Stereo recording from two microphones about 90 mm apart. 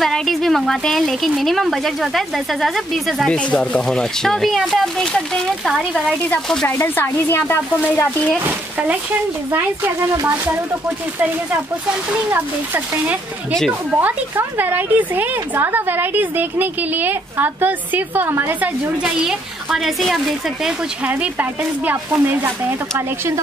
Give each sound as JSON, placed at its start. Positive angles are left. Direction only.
{"t": 0.0, "sound": "speech", "side_deg": 5}
{"t": 3.3, "sound": "speech", "side_deg": 10}
{"t": 6.7, "sound": "speech", "side_deg": 25}
{"t": 11.1, "sound": "speech", "side_deg": -20}
{"t": 19.1, "sound": "speech", "side_deg": -5}
{"t": 21.0, "sound": "speech", "side_deg": -15}